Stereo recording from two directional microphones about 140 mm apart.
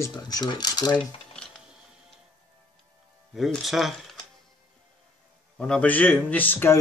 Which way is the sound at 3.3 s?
Centre (ahead or behind).